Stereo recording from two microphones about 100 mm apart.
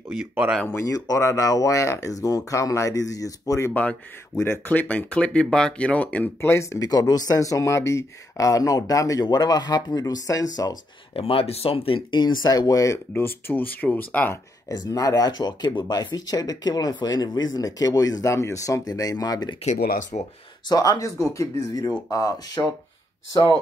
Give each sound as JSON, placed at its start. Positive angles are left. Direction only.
{"t": 0.7, "sound": "speech", "side_deg": 40}
{"t": 4.6, "sound": "speech", "side_deg": 15}
{"t": 6.9, "sound": "speech", "side_deg": 40}
{"t": 11.1, "sound": "speech", "side_deg": 75}
{"t": 13.1, "sound": "speech", "side_deg": 20}
{"t": 14.7, "sound": "speech", "side_deg": 35}
{"t": 20.6, "sound": "speech", "side_deg": 40}